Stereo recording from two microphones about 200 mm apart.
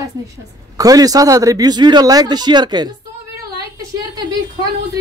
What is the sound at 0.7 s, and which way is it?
Speech, 20° right (ahead or behind).